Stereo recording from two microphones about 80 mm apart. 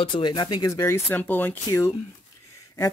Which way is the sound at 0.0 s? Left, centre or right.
Left.